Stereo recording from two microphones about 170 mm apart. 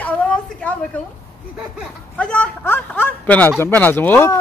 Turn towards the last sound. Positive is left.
turn(degrees=10)  # may be behind; listen again after turning